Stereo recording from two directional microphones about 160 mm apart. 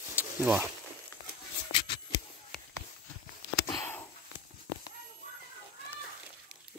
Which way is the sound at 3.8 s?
15° left (ahead or behind).